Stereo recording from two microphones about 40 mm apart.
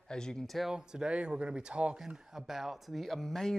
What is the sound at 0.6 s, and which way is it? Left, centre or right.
Speech, centre.